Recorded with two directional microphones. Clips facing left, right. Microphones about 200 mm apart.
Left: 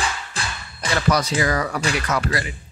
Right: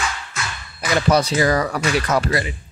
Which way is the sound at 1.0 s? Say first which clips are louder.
Right 3 dB; 30° right (ahead or behind).